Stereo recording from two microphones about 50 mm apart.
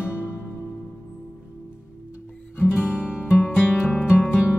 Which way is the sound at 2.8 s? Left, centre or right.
Right.